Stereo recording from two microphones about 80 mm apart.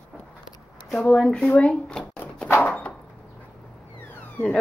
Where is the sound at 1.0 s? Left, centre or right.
Centre.